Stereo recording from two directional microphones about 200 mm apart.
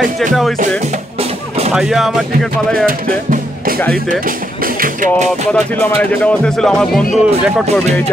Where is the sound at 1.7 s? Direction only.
Centre (ahead or behind).